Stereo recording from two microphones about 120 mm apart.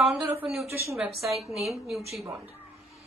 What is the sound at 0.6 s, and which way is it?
Speech, 25° right (ahead or behind).